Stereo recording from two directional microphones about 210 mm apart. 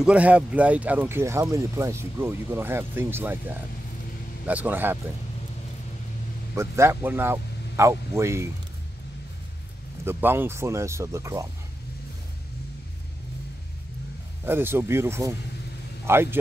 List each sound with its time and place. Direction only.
0.0 s speech: 5° right (ahead or behind)
6.5 s speech: 15° right (ahead or behind)
10.0 s speech: 10° right (ahead or behind)
14.4 s speech: 10° right (ahead or behind)